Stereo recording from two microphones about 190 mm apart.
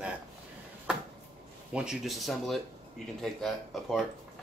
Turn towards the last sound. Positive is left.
turn(degrees=0)  # may be behind; listen again after turning